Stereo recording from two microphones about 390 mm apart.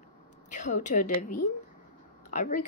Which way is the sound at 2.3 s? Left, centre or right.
Centre.